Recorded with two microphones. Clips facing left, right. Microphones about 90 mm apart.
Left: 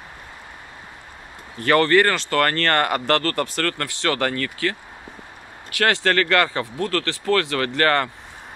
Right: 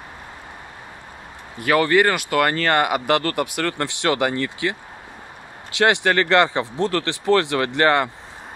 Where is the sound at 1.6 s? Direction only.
10° right (ahead or behind).